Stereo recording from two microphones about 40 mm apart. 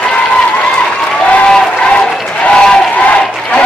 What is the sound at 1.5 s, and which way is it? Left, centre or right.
Applause, left.